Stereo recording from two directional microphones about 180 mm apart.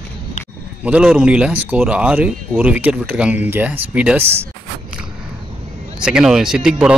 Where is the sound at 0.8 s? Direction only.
5° right (ahead or behind).